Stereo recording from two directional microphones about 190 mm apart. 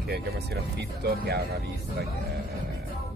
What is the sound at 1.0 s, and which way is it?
Speech, 55° right (ahead or behind).